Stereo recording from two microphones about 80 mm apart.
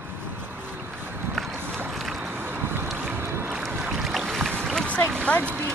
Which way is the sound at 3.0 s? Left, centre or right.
Right.